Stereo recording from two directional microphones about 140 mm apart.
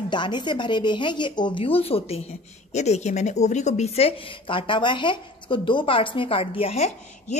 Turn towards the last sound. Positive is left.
turn(degrees=50)  # may be behind; listen again after turning